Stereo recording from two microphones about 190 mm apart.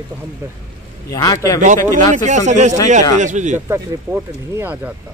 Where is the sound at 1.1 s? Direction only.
20° left (ahead or behind).